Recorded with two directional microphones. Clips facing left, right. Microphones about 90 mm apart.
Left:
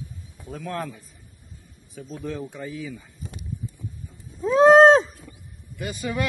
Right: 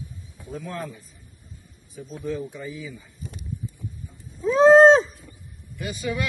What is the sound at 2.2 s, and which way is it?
Speech, 60° left (ahead or behind).